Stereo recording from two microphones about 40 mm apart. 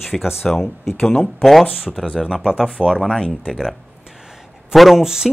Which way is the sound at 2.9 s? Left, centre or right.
Centre.